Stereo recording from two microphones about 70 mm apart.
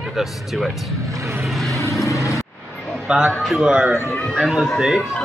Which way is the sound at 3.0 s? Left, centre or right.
Centre.